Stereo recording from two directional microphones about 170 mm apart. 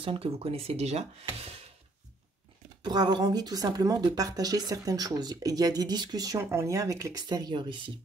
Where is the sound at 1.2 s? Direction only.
35° right (ahead or behind).